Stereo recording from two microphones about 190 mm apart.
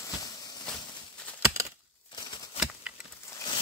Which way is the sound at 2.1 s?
25° left (ahead or behind).